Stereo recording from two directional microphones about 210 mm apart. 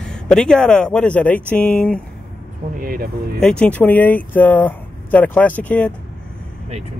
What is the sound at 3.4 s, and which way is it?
Speech, 5° left (ahead or behind).